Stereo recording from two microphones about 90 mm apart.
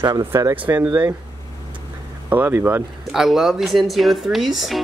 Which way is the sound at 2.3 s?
20° right (ahead or behind).